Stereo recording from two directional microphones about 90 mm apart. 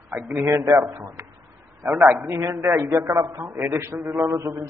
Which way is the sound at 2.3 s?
30° right (ahead or behind).